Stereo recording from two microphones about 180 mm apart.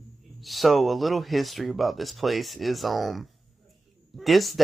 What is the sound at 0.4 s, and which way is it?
Speech, centre (ahead or behind).